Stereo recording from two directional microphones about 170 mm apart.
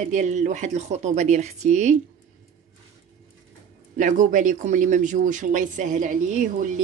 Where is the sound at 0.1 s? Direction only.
45° right (ahead or behind).